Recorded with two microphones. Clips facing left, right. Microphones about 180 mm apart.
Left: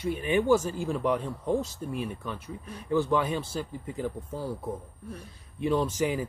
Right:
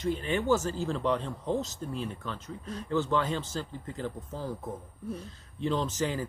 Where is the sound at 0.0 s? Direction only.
15° left (ahead or behind).